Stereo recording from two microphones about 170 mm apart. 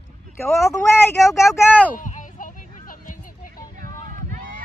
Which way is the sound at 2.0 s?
50° left (ahead or behind).